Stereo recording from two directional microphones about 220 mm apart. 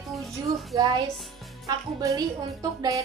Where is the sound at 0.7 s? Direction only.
15° right (ahead or behind).